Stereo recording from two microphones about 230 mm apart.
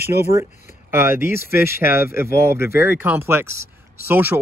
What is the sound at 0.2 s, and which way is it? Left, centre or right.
Speech, centre.